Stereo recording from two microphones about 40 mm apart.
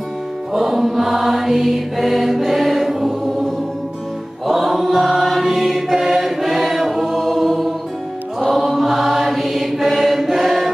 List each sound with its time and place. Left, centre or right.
0.5 s mantra: centre
4.5 s chant: centre